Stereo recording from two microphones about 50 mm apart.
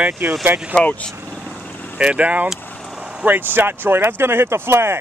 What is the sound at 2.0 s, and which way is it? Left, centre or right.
Speech, right.